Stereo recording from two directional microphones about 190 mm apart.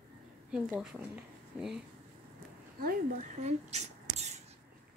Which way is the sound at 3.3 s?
35° right (ahead or behind).